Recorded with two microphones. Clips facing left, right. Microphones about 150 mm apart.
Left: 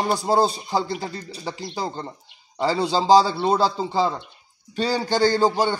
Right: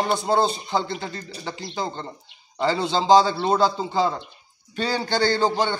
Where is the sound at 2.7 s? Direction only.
35° left (ahead or behind).